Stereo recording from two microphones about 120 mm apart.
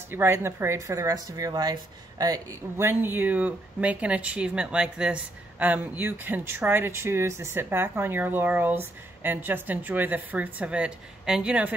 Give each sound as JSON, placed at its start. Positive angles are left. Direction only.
{"t": 0.1, "sound": "speech", "side_deg": -20}